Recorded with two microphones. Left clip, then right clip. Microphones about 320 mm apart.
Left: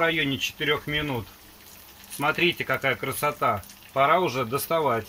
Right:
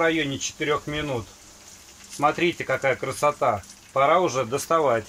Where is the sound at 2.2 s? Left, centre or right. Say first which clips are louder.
Right 1 dB; centre.